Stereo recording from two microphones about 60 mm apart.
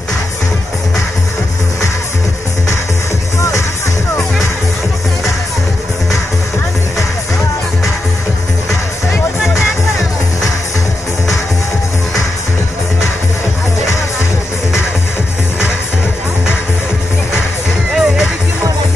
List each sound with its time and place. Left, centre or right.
3.3 s music: left
17.9 s music: centre